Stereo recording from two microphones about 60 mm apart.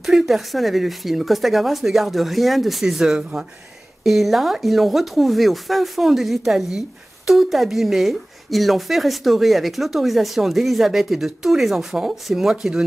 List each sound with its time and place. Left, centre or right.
0.0 s speech: centre
3.2 s speech: centre
4.0 s speech: centre